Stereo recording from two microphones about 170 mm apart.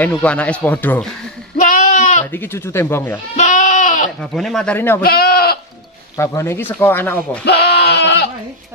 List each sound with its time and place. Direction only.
0.0 s speech: 10° left (ahead or behind)
1.6 s sheep: 45° left (ahead or behind)
2.3 s speech: 15° left (ahead or behind)
3.3 s goat: 45° left (ahead or behind)
4.2 s speech: centre (ahead or behind)
5.0 s sheep: 60° left (ahead or behind)
6.1 s speech: 15° left (ahead or behind)
7.4 s goat: 75° left (ahead or behind)